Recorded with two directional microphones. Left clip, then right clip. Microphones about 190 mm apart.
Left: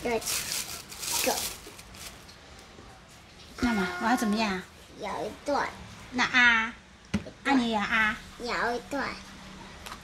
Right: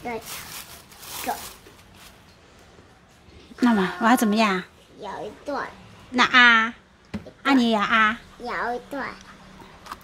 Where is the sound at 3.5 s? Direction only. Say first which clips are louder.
Right 7 dB; 50° right (ahead or behind).